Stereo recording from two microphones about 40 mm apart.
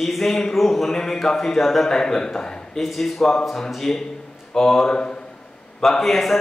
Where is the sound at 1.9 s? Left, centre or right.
Centre.